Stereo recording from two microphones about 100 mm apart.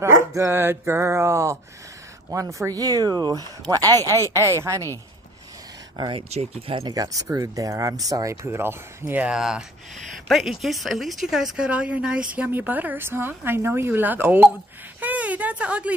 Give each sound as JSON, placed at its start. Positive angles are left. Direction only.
{"t": 0.0, "sound": "speech", "side_deg": -30}
{"t": 4.0, "sound": "speech", "side_deg": 25}
{"t": 4.3, "sound": "speech", "side_deg": -30}
{"t": 5.9, "sound": "speech", "side_deg": -50}
{"t": 6.8, "sound": "speech", "side_deg": -35}
{"t": 9.3, "sound": "a woman's voice", "side_deg": -5}
{"t": 15.0, "sound": "a sound", "side_deg": -15}